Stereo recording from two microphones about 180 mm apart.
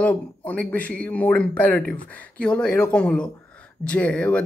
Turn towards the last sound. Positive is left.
turn(degrees=5)  # may be behind; listen again after turning